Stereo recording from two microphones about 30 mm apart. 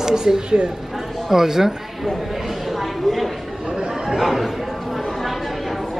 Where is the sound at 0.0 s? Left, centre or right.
Centre.